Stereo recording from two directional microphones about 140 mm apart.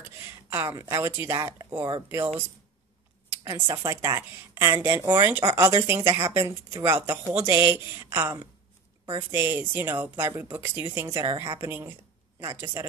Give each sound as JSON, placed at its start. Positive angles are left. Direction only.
{"t": 0.0, "sound": "speech", "side_deg": -15}